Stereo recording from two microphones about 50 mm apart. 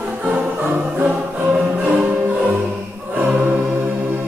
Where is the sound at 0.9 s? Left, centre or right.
Right.